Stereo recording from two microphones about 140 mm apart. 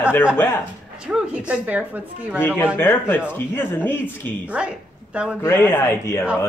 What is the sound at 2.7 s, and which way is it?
Speech, 15° left (ahead or behind).